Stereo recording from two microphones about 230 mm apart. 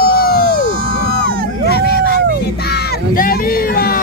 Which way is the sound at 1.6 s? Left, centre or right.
Left.